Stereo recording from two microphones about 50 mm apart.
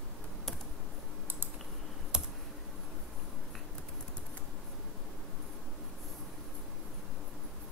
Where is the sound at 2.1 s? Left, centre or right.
Centre.